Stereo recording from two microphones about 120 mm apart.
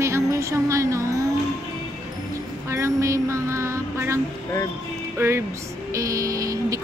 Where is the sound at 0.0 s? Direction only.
25° right (ahead or behind).